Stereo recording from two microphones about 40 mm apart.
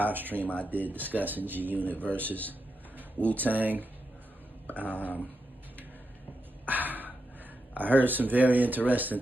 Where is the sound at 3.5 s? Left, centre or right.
Right.